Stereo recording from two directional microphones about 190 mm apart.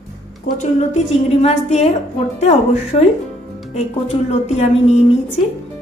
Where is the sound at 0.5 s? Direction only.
40° left (ahead or behind).